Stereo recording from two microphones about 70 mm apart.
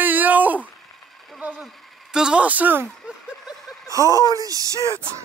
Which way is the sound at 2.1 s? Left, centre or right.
Centre.